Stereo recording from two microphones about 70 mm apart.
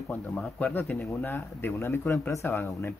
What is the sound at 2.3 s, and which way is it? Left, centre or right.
Speech, left.